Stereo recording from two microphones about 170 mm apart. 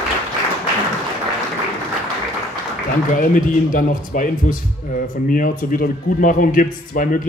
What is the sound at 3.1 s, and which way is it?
A man's voice, 50° left (ahead or behind).